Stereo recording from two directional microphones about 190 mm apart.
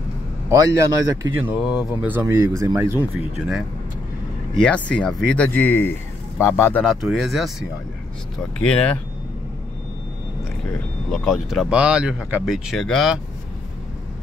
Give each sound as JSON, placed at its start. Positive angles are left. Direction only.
{"t": 0.7, "sound": "speech", "side_deg": -15}
{"t": 1.7, "sound": "speech", "side_deg": -5}
{"t": 4.6, "sound": "speech", "side_deg": 5}
{"t": 8.5, "sound": "speech", "side_deg": 5}
{"t": 11.1, "sound": "speech", "side_deg": 0}